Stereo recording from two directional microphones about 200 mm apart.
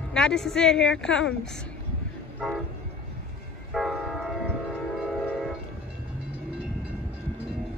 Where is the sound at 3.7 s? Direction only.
Centre (ahead or behind).